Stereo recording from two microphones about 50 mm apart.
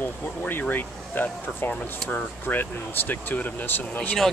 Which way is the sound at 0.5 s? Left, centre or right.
Left.